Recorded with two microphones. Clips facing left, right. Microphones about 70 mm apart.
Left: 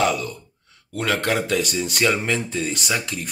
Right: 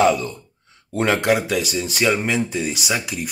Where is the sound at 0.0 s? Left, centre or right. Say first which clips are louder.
Right 4 dB; right.